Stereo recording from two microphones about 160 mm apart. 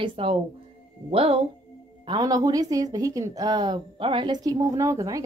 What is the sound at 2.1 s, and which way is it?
Speech, 20° right (ahead or behind).